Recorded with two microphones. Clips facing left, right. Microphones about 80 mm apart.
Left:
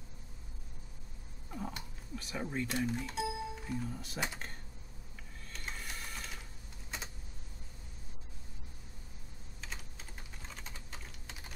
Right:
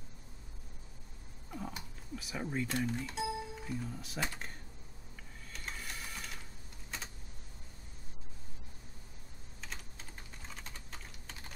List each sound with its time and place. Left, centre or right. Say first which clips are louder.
1.5 s speech: left 1 dB; centre
5.5 s mechanisms: even; centre
9.6 s typing: even; centre